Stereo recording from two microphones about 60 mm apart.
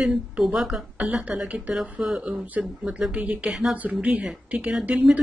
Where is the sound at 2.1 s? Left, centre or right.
Centre.